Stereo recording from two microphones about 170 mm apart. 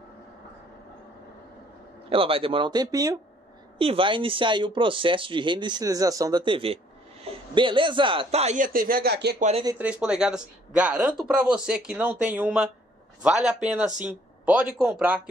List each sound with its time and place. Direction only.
2.0 s speech: 35° right (ahead or behind)
3.7 s speech: 30° right (ahead or behind); by 9.4 s 70° right (ahead or behind)
9.4 s speech: 40° right (ahead or behind)
9.8 s speech: 5° right (ahead or behind)